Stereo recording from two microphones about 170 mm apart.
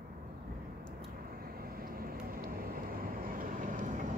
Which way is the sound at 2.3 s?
55° right (ahead or behind).